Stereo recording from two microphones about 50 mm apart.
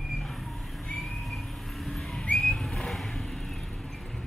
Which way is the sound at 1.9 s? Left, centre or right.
Centre.